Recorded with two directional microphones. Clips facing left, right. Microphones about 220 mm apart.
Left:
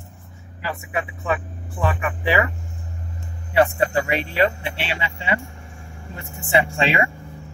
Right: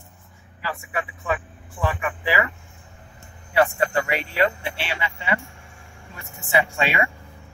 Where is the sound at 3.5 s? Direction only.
25° left (ahead or behind).